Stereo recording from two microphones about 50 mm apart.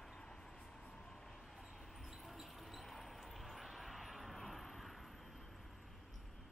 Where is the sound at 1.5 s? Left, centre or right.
Centre.